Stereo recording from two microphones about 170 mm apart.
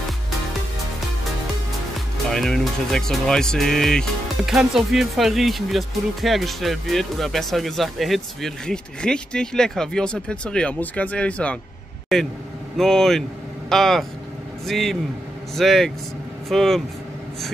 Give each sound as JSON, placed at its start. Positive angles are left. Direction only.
{"t": 2.2, "sound": "speech", "side_deg": 5}